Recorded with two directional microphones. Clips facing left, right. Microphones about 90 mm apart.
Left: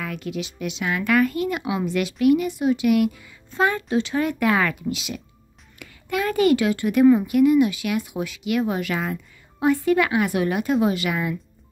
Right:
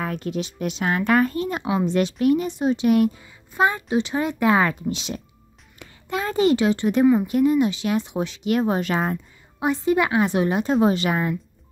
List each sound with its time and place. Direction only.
0.0 s speech: 35° right (ahead or behind)
3.5 s a woman's voice: 20° right (ahead or behind)
9.6 s a woman's voice: 20° right (ahead or behind)